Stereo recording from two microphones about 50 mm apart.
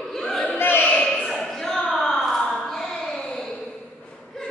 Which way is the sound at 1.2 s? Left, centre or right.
Centre.